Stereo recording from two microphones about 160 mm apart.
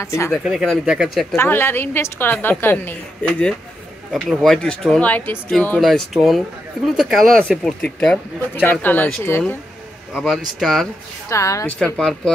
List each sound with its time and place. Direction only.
0.0 s a woman's voice: 20° left (ahead or behind)
0.3 s speech: centre (ahead or behind)
1.3 s a woman's voice: 15° left (ahead or behind)
10.1 s speech: centre (ahead or behind)
11.2 s a woman's voice: 20° left (ahead or behind)
11.8 s speech: 5° left (ahead or behind)